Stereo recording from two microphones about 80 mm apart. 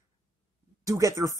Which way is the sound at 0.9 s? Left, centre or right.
Right.